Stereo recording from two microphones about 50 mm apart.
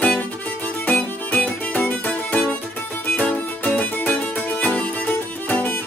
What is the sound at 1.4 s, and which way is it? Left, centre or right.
Music, left.